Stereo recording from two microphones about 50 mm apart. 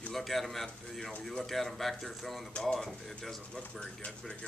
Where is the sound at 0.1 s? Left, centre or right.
Centre.